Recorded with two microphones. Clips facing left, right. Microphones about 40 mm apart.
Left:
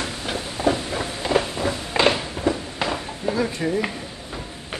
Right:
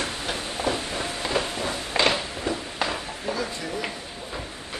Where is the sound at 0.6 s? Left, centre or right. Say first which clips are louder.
Left 6 dB; right.